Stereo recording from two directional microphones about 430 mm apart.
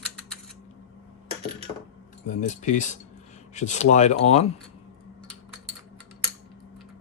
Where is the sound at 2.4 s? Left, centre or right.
Centre.